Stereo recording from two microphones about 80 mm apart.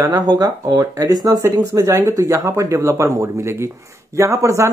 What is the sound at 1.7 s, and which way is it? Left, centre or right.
Speech, right.